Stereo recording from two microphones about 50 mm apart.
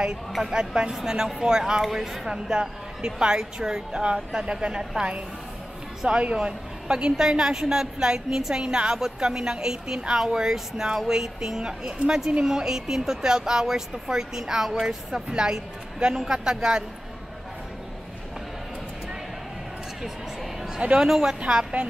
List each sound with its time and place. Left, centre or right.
0.3 s speech: centre
21.0 s a woman's voice: centre